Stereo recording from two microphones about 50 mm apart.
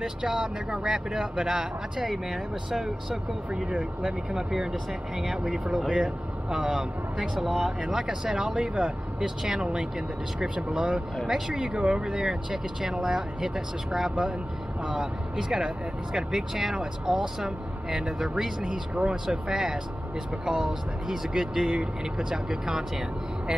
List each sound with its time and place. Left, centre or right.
0.0 s speech: centre
7.3 s speech: centre
7.8 s speech: centre
14.9 s speech: centre